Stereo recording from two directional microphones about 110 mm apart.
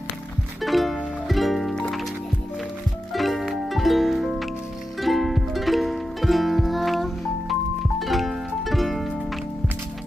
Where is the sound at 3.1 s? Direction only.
Centre (ahead or behind).